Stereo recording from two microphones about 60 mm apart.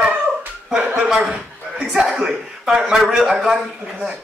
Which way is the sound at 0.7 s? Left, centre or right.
Right.